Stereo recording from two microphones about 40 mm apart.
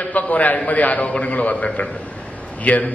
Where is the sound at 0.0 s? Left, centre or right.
Left.